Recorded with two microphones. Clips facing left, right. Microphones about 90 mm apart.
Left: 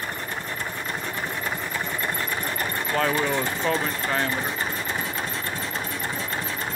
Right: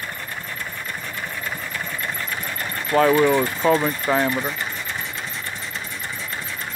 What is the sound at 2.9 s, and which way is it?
Speech, 5° right (ahead or behind).